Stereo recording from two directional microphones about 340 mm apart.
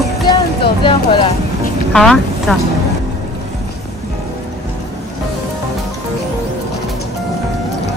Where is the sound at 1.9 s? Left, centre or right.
Centre.